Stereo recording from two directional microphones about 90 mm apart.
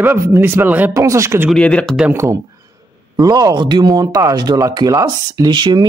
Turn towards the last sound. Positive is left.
turn(degrees=-55)  # may be behind; listen again after turning